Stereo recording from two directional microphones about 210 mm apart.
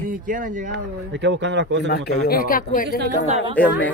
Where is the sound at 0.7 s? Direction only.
55° right (ahead or behind).